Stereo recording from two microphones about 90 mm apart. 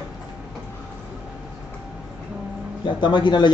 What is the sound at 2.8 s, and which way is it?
Speech, 60° left (ahead or behind).